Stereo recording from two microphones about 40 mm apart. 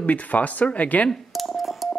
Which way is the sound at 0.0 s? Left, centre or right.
Left.